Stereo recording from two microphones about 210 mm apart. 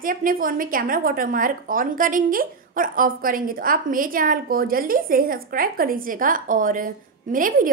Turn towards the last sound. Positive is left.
turn(degrees=-40)  # may be behind; listen again after turning